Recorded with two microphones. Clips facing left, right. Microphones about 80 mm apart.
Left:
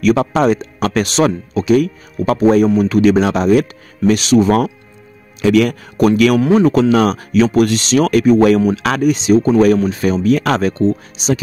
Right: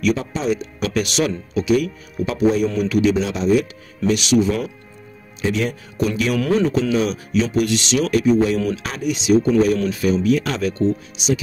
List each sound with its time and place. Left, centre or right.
0.1 s a man's voice: left
0.7 s speech: left
4.1 s speech: left
4.5 s a man's voice: left
8.1 s a man's voice: left
8.7 s speech: left
9.0 s speech: left